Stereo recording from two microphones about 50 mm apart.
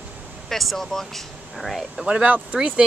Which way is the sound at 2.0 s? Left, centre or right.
Right.